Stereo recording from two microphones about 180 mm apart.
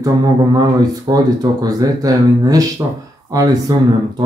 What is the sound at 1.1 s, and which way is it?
Speech, 20° right (ahead or behind).